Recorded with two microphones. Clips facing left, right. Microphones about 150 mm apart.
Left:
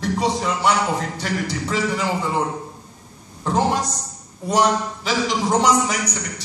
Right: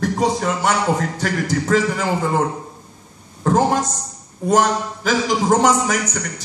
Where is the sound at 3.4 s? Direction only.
45° right (ahead or behind).